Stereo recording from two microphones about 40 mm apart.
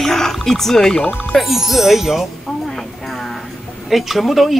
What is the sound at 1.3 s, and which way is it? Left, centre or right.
Speech, centre.